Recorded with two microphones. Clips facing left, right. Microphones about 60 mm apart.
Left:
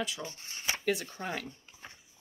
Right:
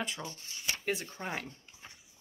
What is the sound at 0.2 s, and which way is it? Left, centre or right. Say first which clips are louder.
Shuffling cards: left 1 dB; left.